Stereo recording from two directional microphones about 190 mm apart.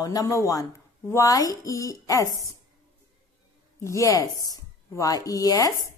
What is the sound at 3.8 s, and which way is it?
Speech, 15° left (ahead or behind).